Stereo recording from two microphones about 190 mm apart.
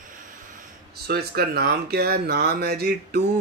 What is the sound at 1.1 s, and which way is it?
Speech, 55° right (ahead or behind).